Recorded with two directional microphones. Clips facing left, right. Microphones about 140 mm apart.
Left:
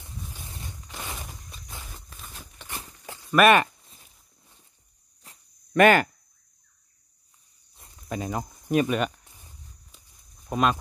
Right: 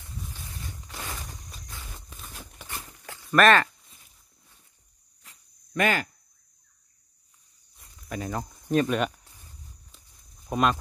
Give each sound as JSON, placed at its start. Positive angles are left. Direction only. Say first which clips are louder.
{"t": 0.0, "sound": "a sound", "louder": "even", "side_deg": 20}
{"t": 2.0, "sound": "a sound", "louder": "even", "side_deg": 0}
{"t": 3.3, "sound": "speech", "louder": "left 1 dB", "side_deg": 10}
{"t": 5.2, "sound": "a sound", "louder": "left 3 dB", "side_deg": 35}
{"t": 5.7, "sound": "speech", "louder": "left 8 dB", "side_deg": 65}
{"t": 7.7, "sound": "cricket", "louder": "left 3 dB", "side_deg": 30}
{"t": 8.2, "sound": "speech", "louder": "even", "side_deg": 15}
{"t": 9.2, "sound": "walk", "louder": "even", "side_deg": 20}
{"t": 10.5, "sound": "speech", "louder": "even", "side_deg": 0}